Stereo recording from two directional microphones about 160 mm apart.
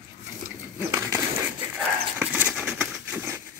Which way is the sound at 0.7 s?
15° right (ahead or behind).